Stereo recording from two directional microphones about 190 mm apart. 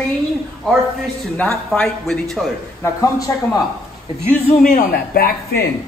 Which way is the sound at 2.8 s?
15° left (ahead or behind).